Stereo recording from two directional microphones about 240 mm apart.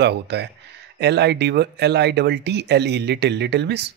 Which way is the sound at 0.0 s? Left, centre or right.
Right.